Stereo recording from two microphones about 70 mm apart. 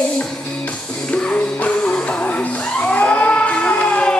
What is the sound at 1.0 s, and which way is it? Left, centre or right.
Music, centre.